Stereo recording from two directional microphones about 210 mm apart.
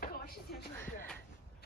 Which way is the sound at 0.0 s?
45° left (ahead or behind).